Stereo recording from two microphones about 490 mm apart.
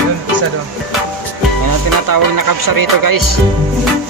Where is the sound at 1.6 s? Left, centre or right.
Right.